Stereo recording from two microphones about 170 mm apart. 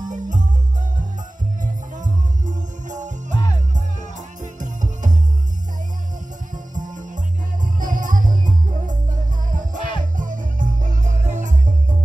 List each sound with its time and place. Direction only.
0.1 s music: 45° right (ahead or behind)
1.6 s music: 45° right (ahead or behind)
4.4 s music: 50° right (ahead or behind)
6.5 s music: 50° right (ahead or behind)
9.8 s music: 30° left (ahead or behind)
10.1 s music: 50° right (ahead or behind)